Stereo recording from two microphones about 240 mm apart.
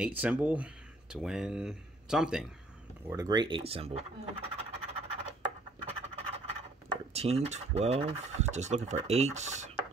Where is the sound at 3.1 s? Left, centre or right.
Centre.